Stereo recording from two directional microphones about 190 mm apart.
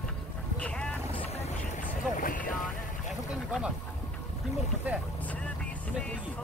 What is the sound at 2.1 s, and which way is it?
Speech, 45° left (ahead or behind).